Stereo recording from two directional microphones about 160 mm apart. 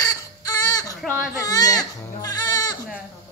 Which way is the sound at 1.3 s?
25° left (ahead or behind).